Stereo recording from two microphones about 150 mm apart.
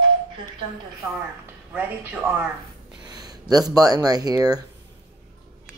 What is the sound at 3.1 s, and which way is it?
Speech, 25° right (ahead or behind).